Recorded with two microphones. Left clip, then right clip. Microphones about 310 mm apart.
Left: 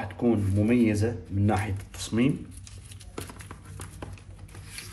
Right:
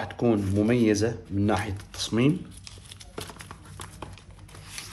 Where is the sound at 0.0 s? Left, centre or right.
Centre.